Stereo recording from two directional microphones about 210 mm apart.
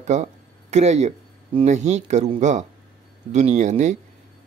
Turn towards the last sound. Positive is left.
turn(degrees=-35)  # may be behind; listen again after turning